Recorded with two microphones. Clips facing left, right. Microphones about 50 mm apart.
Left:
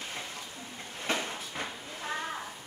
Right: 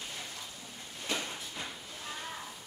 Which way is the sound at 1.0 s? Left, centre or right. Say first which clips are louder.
Left 4 dB; left.